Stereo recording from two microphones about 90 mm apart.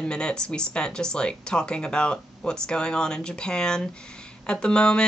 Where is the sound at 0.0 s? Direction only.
10° left (ahead or behind).